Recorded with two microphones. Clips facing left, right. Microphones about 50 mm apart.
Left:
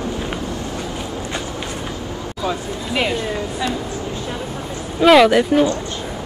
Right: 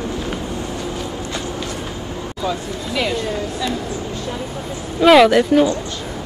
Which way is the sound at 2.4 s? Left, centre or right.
Left.